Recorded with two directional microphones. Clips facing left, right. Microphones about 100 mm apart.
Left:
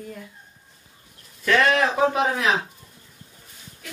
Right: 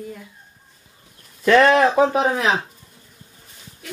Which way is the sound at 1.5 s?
35° right (ahead or behind).